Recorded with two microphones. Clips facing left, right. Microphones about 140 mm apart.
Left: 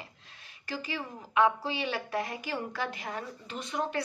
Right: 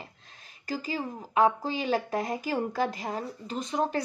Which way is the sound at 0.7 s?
40° right (ahead or behind).